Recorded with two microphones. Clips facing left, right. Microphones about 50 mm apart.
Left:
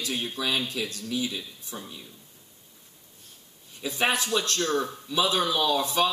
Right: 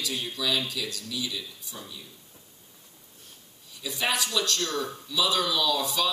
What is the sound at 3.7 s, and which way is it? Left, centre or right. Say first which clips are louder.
Speech: left 3 dB; left.